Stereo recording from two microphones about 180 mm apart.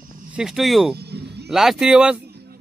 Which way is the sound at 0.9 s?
65° right (ahead or behind).